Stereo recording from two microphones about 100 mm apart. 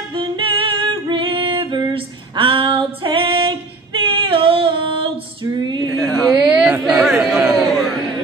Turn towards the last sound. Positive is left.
turn(degrees=-5)  # may be behind; listen again after turning